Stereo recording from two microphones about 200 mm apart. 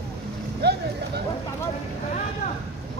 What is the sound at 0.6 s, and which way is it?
Vehicle, 55° right (ahead or behind).